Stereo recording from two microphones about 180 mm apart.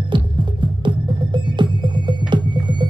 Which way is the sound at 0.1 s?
25° right (ahead or behind).